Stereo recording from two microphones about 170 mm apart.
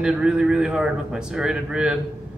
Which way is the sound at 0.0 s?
5° right (ahead or behind).